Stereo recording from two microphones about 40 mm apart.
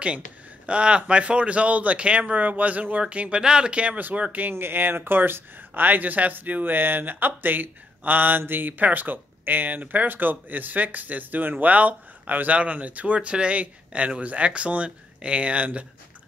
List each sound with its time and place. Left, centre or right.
0.7 s speech: right
4.0 s speech: right
4.6 s speech: right